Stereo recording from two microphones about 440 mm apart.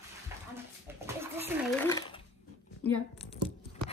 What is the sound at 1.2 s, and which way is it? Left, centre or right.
Speech, centre.